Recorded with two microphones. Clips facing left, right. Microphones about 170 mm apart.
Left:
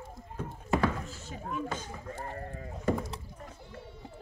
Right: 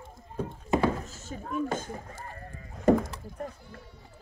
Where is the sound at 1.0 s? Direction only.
45° right (ahead or behind).